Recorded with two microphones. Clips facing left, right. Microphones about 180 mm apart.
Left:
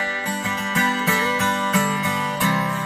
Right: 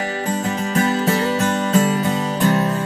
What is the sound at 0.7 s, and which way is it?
Music, 40° right (ahead or behind).